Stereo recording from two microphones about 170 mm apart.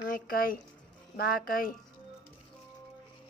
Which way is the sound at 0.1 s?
60° left (ahead or behind).